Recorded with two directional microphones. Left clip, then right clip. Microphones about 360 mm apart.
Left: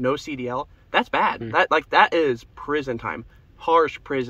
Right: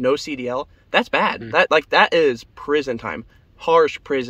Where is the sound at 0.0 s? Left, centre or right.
Right.